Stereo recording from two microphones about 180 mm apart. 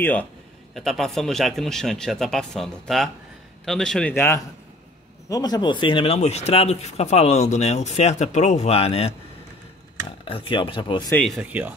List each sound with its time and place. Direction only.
0.0 s a man's voice: 10° left (ahead or behind)
5.3 s speech: 20° left (ahead or behind)
10.2 s speech: 30° left (ahead or behind)
11.1 s speech: 5° left (ahead or behind)